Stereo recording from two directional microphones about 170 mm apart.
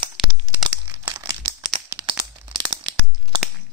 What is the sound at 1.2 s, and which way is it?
Crumpling, 25° right (ahead or behind).